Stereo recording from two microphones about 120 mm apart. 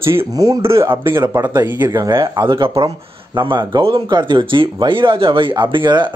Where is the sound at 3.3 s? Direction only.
40° right (ahead or behind).